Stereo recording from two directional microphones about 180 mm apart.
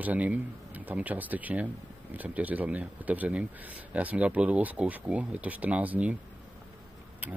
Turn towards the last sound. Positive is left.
turn(degrees=-10)  # may be behind; listen again after turning